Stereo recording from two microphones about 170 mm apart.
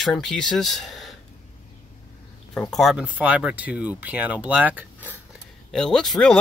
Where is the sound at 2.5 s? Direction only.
5° left (ahead or behind).